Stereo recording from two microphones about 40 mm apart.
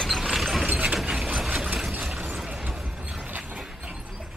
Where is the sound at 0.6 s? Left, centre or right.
Right.